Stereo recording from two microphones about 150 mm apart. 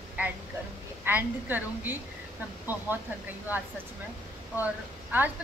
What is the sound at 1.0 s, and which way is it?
Speech, 10° right (ahead or behind).